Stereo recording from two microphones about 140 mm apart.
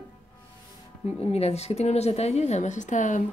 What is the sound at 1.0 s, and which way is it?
A woman's voice, 45° left (ahead or behind).